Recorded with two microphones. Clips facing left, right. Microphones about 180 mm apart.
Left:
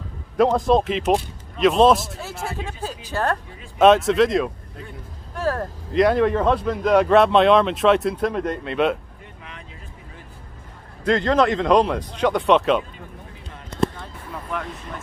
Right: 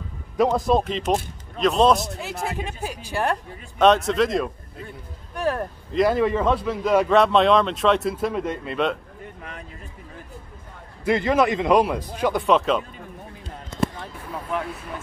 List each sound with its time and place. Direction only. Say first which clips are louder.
0.4 s speech: left 2 dB; centre (ahead or behind)
2.4 s speech: even; 15° right (ahead or behind)
3.7 s speech: left 3 dB; 5° left (ahead or behind)
5.3 s speech: even; 15° right (ahead or behind)
5.9 s speech: left 2 dB; centre (ahead or behind)
11.1 s speech: left 1 dB; 10° right (ahead or behind)